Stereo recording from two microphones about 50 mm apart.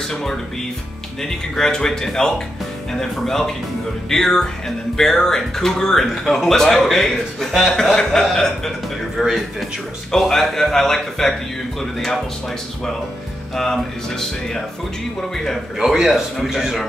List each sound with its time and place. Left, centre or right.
0.1 s speech: centre
9.2 s speech: centre
10.1 s speech: centre
13.6 s speech: centre
15.8 s speech: centre